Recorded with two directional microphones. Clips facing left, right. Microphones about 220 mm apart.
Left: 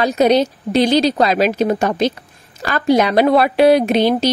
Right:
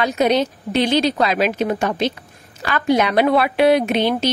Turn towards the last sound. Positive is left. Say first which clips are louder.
# left 4 dB
turn(degrees=35)  # may be behind; listen again after turning